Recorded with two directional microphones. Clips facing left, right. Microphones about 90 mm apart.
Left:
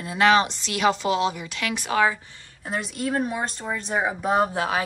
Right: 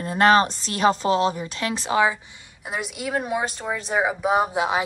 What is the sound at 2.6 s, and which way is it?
Speech, 10° right (ahead or behind).